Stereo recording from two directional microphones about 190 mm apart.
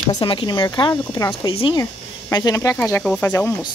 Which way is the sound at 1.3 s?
30° left (ahead or behind).